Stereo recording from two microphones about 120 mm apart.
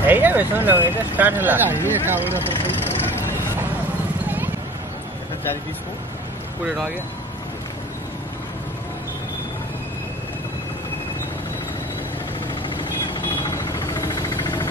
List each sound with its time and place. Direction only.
0.0 s speech: 15° right (ahead or behind)
13.4 s vehicle: 30° left (ahead or behind)